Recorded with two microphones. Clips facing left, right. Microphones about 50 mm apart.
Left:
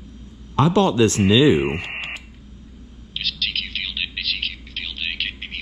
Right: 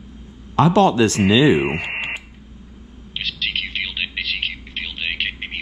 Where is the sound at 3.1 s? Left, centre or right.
Right.